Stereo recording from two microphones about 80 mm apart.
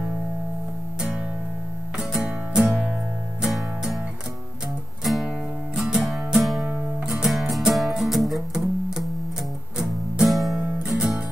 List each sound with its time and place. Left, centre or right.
2.0 s music: centre
2.6 s music: centre
3.4 s music: centre
5.0 s music: centre